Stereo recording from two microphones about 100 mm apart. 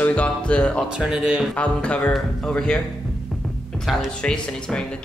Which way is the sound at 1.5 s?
10° left (ahead or behind).